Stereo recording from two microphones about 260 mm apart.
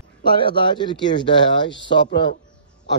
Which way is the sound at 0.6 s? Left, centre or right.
Centre.